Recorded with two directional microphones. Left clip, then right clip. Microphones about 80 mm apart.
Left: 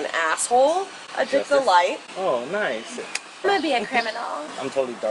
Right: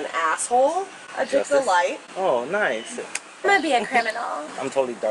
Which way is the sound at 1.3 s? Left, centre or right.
Right.